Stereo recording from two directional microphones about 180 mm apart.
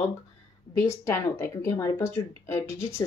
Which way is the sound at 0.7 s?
15° left (ahead or behind).